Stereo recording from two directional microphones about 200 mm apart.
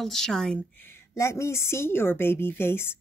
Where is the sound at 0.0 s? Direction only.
Centre (ahead or behind).